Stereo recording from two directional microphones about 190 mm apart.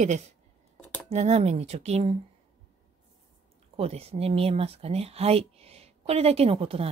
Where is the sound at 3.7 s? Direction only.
30° right (ahead or behind).